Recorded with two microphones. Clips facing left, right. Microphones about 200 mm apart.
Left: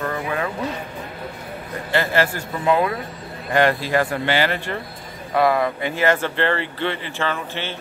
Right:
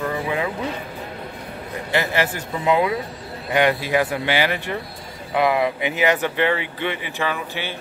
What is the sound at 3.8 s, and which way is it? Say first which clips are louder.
Speech: even; 10° right (ahead or behind).